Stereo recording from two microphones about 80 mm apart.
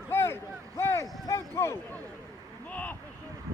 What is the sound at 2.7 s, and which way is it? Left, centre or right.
Speech, centre.